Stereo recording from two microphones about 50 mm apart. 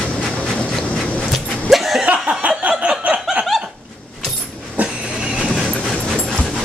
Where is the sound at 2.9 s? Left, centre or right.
Centre.